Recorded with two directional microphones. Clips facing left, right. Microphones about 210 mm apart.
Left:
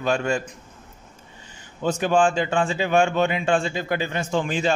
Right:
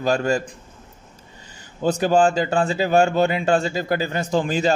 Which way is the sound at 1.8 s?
35° right (ahead or behind).